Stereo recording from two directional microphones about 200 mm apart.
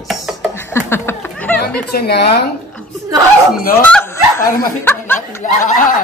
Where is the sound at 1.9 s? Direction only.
55° left (ahead or behind).